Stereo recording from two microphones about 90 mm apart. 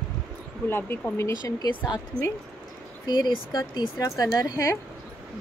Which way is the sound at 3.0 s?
55° left (ahead or behind).